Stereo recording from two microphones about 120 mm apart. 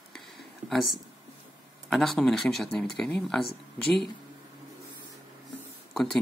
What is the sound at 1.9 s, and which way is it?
Speech, centre (ahead or behind).